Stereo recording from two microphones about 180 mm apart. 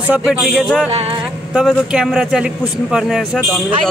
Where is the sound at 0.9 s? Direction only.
35° right (ahead or behind).